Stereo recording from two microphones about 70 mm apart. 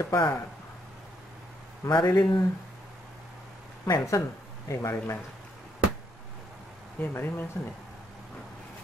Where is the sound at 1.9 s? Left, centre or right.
Left.